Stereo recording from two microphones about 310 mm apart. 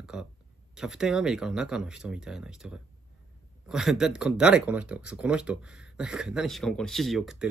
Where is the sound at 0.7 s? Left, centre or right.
Centre.